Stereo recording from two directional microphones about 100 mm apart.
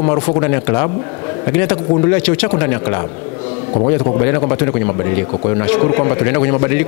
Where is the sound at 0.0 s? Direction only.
20° left (ahead or behind).